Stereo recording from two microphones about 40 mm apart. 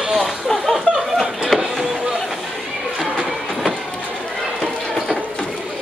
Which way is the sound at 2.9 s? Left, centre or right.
Centre.